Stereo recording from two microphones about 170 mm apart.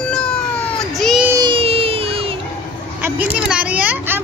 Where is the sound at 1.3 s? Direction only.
30° right (ahead or behind).